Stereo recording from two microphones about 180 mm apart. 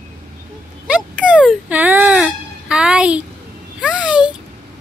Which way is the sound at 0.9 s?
5° right (ahead or behind).